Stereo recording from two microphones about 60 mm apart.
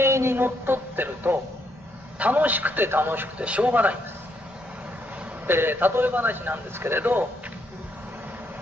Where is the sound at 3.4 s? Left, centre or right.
Right.